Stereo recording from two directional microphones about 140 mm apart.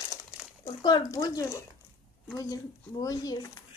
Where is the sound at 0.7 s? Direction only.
35° left (ahead or behind).